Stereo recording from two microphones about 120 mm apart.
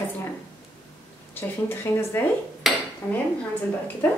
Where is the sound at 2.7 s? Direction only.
Centre (ahead or behind).